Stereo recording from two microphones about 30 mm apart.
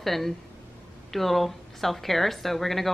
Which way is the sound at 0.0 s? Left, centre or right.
Centre.